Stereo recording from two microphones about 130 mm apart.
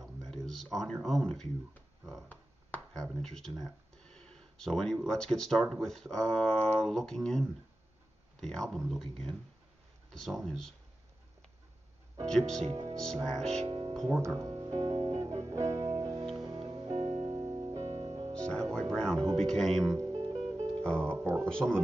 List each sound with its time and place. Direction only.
0.2 s a sound: 5° left (ahead or behind)
1.0 s speech: centre (ahead or behind)
12.3 s speech: 5° left (ahead or behind)
13.7 s music: 35° right (ahead or behind)
13.9 s speech: 5° left (ahead or behind)
14.2 s speech: 25° right (ahead or behind)
15.1 s music: 25° right (ahead or behind)
18.5 s speech: 5° left (ahead or behind)
19.9 s music: 30° right (ahead or behind)
20.8 s speech: 10° left (ahead or behind)